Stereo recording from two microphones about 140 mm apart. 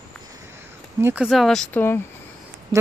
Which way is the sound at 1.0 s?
15° right (ahead or behind).